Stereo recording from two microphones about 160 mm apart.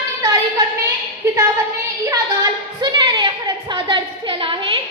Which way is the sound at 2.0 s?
20° right (ahead or behind).